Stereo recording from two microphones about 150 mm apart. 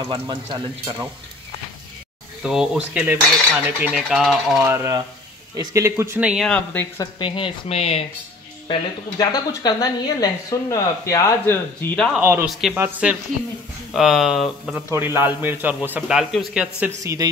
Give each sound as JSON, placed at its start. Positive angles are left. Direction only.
{"t": 0.1, "sound": "speech", "side_deg": -30}
{"t": 2.4, "sound": "cutlery", "side_deg": -5}
{"t": 4.6, "sound": "speech", "side_deg": -20}
{"t": 6.2, "sound": "cutlery", "side_deg": -5}
{"t": 6.5, "sound": "speech", "side_deg": 10}
{"t": 7.0, "sound": "speech", "side_deg": 30}
{"t": 9.2, "sound": "speech", "side_deg": 25}
{"t": 12.2, "sound": "a man's voice", "side_deg": -15}
{"t": 12.4, "sound": "cutlery", "side_deg": 0}
{"t": 12.7, "sound": "a man's voice", "side_deg": -10}
{"t": 13.9, "sound": "cutlery", "side_deg": 0}
{"t": 14.9, "sound": "a man's voice", "side_deg": -15}
{"t": 17.0, "sound": "speech", "side_deg": -20}